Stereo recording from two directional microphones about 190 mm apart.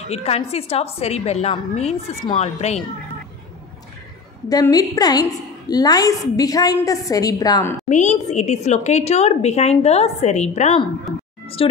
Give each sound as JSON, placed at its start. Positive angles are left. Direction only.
{"t": 0.1, "sound": "a woman's voice", "side_deg": 35}
{"t": 4.5, "sound": "a woman's voice", "side_deg": 20}
{"t": 7.9, "sound": "a woman's voice", "side_deg": 40}